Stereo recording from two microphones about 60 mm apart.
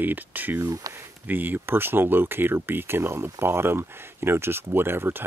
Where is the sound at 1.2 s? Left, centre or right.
Right.